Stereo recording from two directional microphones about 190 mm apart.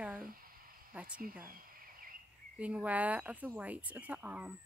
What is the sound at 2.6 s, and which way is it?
Speech, 5° right (ahead or behind).